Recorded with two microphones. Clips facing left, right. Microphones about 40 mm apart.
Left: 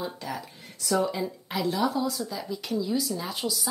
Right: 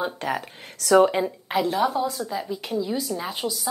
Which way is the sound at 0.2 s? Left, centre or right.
Right.